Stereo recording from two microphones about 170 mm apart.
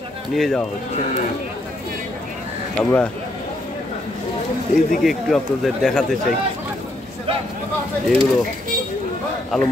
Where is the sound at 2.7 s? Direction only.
10° left (ahead or behind).